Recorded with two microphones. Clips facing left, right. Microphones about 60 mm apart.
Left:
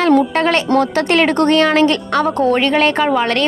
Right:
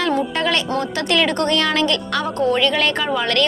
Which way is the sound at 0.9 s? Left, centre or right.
Left.